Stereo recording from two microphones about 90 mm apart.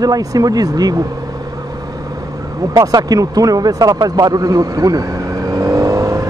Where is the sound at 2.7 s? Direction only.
40° right (ahead or behind).